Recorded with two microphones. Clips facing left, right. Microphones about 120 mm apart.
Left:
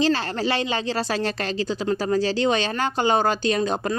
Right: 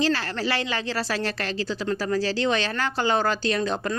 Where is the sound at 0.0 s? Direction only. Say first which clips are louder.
Left 3 dB; 20° left (ahead or behind).